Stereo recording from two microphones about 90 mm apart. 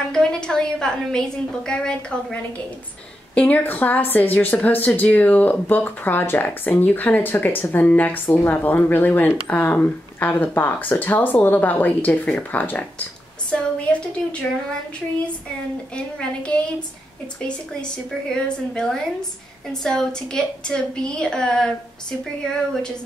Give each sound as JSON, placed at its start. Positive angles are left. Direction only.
{"t": 0.1, "sound": "a woman's voice", "side_deg": 5}
{"t": 3.3, "sound": "a woman's voice", "side_deg": 15}
{"t": 15.9, "sound": "a woman's voice", "side_deg": 10}
{"t": 17.9, "sound": "a woman's voice", "side_deg": 10}